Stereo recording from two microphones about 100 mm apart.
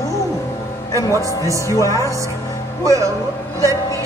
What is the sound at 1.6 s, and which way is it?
Speech, 35° left (ahead or behind).